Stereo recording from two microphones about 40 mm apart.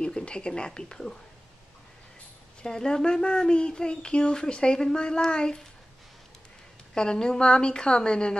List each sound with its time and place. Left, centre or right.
0.0 s speech: left
2.6 s speech: centre
6.9 s speech: centre